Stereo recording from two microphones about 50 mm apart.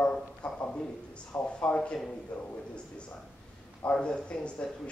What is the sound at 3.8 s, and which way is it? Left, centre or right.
Speech, left.